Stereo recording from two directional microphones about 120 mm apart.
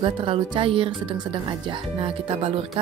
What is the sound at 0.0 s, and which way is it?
Speech, 45° right (ahead or behind).